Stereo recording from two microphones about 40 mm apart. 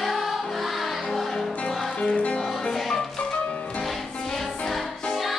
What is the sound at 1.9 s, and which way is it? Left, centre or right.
Music, left.